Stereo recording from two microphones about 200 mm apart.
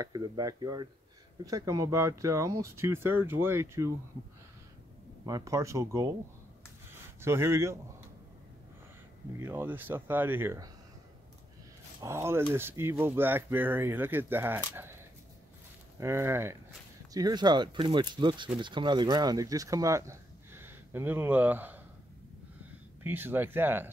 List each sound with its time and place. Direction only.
0.0 s speech: 20° right (ahead or behind)
5.2 s speech: 15° right (ahead or behind)
7.2 s speech: 10° right (ahead or behind)
9.4 s speech: 10° right (ahead or behind)
12.0 s speech: 15° right (ahead or behind)
16.0 s speech: 15° right (ahead or behind)
23.0 s speech: 10° right (ahead or behind)